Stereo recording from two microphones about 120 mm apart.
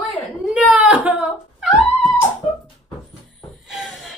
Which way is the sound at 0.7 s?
10° right (ahead or behind).